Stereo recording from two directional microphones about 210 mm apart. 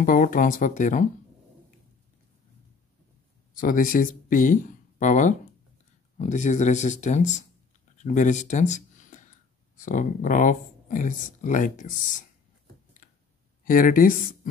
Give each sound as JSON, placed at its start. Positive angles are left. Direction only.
{"t": 0.0, "sound": "speech", "side_deg": 40}
{"t": 3.5, "sound": "speech", "side_deg": 40}
{"t": 13.7, "sound": "speech", "side_deg": 40}